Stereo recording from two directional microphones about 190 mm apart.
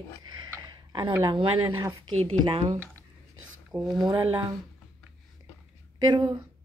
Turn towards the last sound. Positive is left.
turn(degrees=-20)  # may be behind; listen again after turning